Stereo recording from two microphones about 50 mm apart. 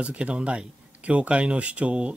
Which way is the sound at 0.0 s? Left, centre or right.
Right.